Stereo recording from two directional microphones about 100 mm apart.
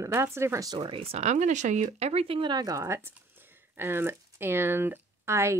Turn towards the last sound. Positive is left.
turn(degrees=-25)  # may be behind; listen again after turning